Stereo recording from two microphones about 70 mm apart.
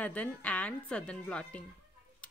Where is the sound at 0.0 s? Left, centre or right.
Left.